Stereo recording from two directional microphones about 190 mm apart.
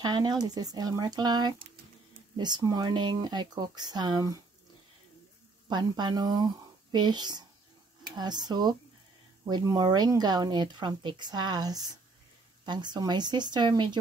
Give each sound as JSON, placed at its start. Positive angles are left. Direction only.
{"t": 0.0, "sound": "speech", "side_deg": -20}
{"t": 5.7, "sound": "speech", "side_deg": -25}